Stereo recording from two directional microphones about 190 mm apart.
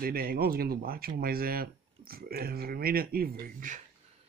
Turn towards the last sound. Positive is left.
turn(degrees=-45)  # may be behind; listen again after turning